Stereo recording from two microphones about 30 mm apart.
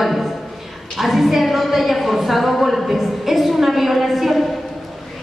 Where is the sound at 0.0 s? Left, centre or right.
Centre.